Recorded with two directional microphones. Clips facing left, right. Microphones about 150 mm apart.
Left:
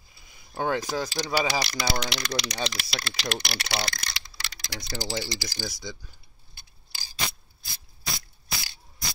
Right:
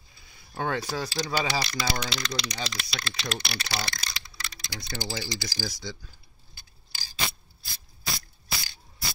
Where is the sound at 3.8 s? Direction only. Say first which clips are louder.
Left 2 dB; 75° left (ahead or behind).